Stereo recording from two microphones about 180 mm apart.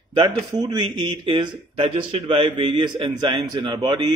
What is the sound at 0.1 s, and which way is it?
A man's voice, 30° right (ahead or behind).